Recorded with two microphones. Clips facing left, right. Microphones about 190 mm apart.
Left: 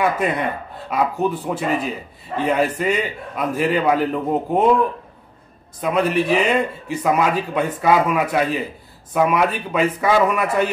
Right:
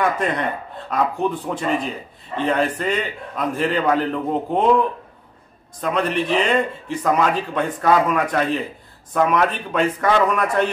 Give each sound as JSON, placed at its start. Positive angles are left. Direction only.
{"t": 0.0, "sound": "a man's voice", "side_deg": 5}
{"t": 5.8, "sound": "a man's voice", "side_deg": 10}